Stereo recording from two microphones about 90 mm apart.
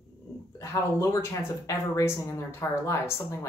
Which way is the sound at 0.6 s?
35° left (ahead or behind).